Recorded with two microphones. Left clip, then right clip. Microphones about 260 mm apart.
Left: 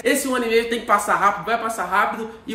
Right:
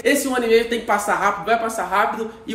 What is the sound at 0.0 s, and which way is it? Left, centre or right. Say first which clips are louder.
Speech: right 2 dB; centre.